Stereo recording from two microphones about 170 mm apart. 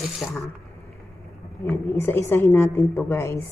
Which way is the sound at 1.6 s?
15° left (ahead or behind).